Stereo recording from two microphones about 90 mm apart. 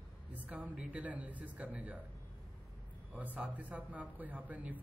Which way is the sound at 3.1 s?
15° right (ahead or behind).